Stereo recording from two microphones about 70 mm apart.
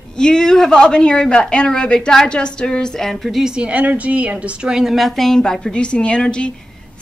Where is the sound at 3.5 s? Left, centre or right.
Centre.